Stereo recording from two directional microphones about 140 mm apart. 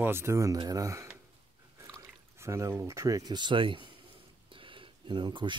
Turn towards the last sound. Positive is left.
turn(degrees=-35)  # may be behind; listen again after turning